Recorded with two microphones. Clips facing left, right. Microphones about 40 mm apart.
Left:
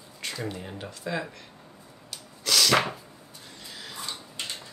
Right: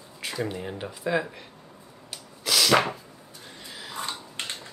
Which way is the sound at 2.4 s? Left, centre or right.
Centre.